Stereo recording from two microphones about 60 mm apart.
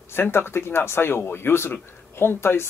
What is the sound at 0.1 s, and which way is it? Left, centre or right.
Speech, left.